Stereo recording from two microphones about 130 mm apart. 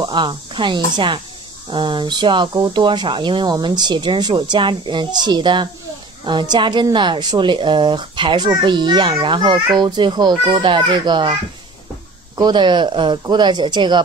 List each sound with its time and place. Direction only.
0.0 s speech: 40° right (ahead or behind)
12.4 s speech: 35° right (ahead or behind)